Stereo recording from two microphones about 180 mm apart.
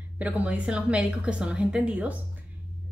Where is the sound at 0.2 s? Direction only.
10° right (ahead or behind).